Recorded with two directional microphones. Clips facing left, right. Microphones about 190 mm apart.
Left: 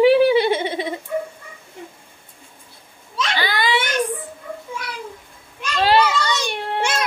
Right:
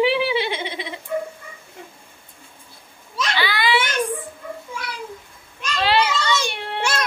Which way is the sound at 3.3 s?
45° left (ahead or behind).